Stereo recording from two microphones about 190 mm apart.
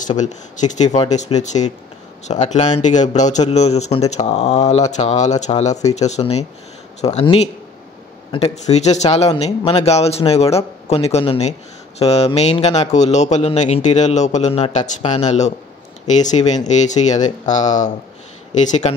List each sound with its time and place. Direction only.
0.0 s a man's voice: 40° left (ahead or behind)